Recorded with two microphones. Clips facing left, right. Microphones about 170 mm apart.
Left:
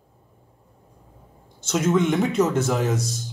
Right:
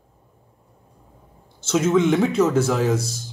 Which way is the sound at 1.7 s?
Centre (ahead or behind).